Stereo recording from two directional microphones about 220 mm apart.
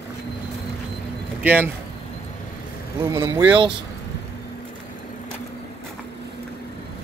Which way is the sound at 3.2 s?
10° right (ahead or behind).